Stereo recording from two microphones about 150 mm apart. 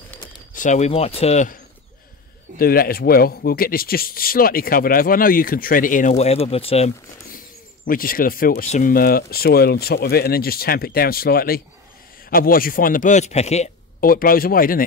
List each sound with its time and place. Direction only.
0.6 s speech: 50° left (ahead or behind)
2.6 s speech: 80° left; by 6.1 s 65° left (ahead or behind)
6.1 s speech: 45° left (ahead or behind)
7.2 s a sound: 70° left (ahead or behind)
8.6 s a man's voice: 60° left (ahead or behind)
14.0 s speech: 75° left (ahead or behind)